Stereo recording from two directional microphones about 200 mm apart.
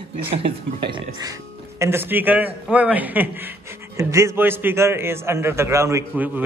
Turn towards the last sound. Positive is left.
turn(degrees=-10)  # may be behind; listen again after turning